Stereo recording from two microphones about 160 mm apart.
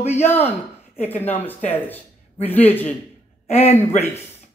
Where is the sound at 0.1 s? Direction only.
15° left (ahead or behind).